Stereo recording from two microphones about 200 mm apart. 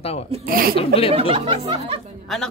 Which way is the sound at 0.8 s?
30° left (ahead or behind).